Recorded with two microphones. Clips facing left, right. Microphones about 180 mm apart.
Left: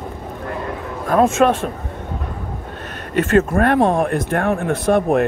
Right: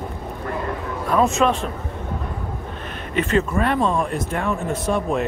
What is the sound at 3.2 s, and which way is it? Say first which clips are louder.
Speech: left 5 dB; 50° left (ahead or behind).